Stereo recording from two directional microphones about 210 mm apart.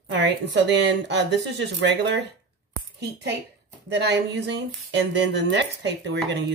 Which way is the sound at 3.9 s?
55° right (ahead or behind).